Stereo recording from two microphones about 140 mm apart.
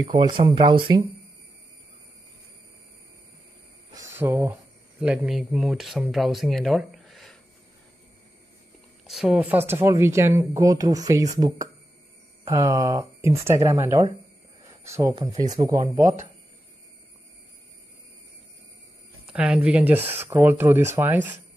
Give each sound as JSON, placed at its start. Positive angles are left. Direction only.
{"t": 0.0, "sound": "speech", "side_deg": -35}
{"t": 4.0, "sound": "speech", "side_deg": -15}
{"t": 9.0, "sound": "speech", "side_deg": -5}
{"t": 19.2, "sound": "speech", "side_deg": -5}